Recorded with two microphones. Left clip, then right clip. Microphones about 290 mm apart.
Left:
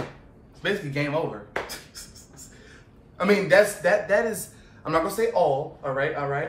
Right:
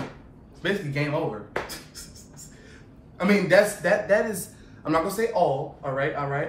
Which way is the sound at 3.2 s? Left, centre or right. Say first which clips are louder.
Left 1 dB; centre.